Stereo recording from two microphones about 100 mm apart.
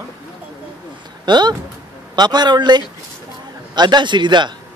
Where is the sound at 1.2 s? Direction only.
45° right (ahead or behind).